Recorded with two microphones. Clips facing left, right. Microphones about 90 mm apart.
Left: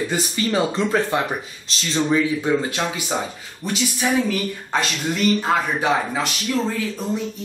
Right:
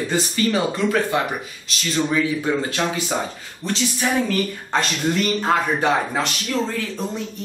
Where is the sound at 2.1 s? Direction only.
15° left (ahead or behind).